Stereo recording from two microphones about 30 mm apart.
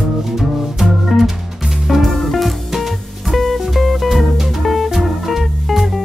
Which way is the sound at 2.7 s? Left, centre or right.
Centre.